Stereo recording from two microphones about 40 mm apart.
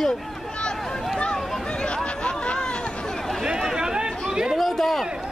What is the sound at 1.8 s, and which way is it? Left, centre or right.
Chatter, left.